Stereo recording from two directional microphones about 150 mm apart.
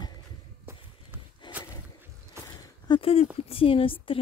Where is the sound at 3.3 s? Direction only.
40° left (ahead or behind).